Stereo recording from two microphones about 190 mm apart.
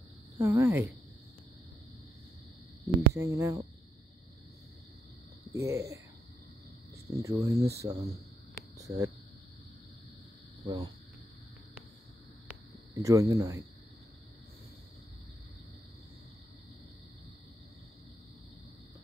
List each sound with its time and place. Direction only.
0.4 s speech: 15° right (ahead or behind)
3.1 s speech: 15° right (ahead or behind)
5.5 s speech: 15° right (ahead or behind)
7.2 s speech: 15° right (ahead or behind)
10.6 s speech: 20° right (ahead or behind)
12.9 s speech: 15° right (ahead or behind)